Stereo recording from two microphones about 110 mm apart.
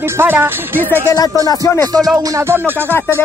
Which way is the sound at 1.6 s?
25° left (ahead or behind).